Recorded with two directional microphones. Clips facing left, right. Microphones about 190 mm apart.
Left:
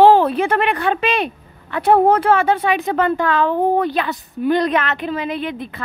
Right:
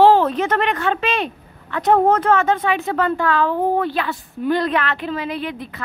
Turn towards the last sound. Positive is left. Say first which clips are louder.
# left 2 dB
turn(degrees=20)  # may be behind; listen again after turning